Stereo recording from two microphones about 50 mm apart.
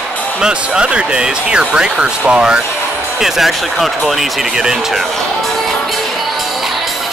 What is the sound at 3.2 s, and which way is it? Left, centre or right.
Speech, centre.